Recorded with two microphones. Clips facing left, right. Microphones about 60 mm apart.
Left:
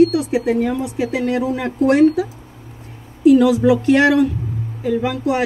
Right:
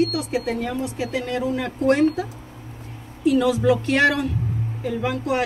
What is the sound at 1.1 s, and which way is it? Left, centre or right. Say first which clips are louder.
Speech: left 4 dB; left.